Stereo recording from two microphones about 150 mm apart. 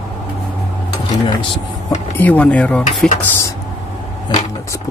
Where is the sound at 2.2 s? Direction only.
10° left (ahead or behind).